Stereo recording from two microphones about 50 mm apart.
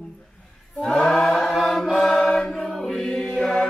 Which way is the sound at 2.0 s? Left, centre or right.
Centre.